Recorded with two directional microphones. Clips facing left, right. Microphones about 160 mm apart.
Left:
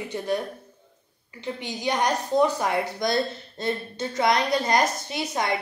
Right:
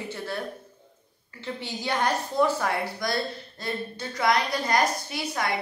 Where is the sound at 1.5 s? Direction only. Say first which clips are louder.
Left 2 dB; 15° left (ahead or behind).